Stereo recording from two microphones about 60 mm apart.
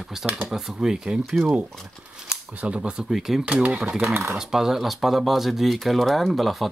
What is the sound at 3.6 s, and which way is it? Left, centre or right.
Speech, centre.